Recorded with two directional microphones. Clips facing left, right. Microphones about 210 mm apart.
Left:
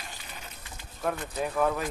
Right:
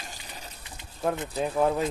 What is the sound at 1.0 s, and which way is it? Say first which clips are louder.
Speech: right 3 dB; 25° right (ahead or behind).